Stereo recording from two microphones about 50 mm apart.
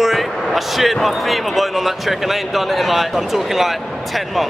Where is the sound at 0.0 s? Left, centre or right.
Centre.